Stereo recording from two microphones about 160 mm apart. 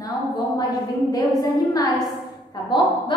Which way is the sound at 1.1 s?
25° left (ahead or behind).